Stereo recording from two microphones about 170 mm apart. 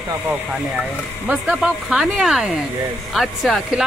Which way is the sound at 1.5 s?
Centre (ahead or behind).